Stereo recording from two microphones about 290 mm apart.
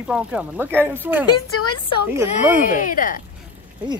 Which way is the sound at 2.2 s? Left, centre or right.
Centre.